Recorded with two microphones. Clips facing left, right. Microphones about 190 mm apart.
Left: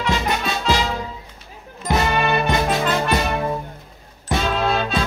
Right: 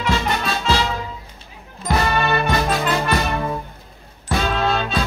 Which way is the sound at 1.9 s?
15° left (ahead or behind).